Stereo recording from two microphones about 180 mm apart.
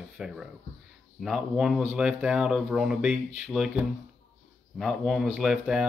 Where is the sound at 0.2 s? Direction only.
5° right (ahead or behind).